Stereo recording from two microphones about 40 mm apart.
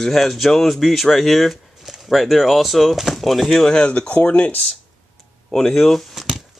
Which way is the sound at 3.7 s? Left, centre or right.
Left.